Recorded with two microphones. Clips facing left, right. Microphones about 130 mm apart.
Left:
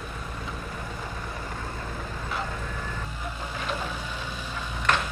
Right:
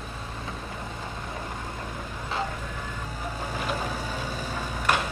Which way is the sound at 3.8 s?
40° right (ahead or behind).